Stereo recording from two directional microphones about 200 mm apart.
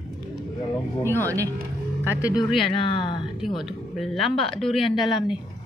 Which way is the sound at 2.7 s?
25° left (ahead or behind).